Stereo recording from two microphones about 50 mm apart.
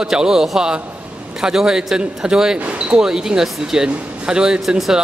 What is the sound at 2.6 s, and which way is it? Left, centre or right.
Basketball bounce, right.